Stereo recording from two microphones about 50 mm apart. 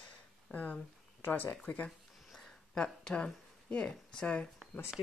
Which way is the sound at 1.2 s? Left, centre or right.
Left.